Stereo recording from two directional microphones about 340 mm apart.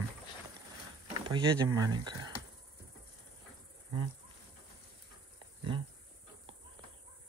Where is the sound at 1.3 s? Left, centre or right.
Centre.